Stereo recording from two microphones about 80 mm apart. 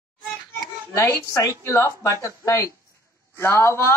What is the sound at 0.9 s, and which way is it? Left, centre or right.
Speech, left.